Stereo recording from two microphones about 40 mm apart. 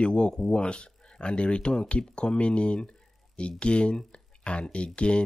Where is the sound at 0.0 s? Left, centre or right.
Left.